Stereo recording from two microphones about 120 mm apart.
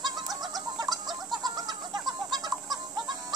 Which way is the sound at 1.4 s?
35° right (ahead or behind).